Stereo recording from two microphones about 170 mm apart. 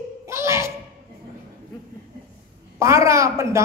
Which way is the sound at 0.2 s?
15° right (ahead or behind).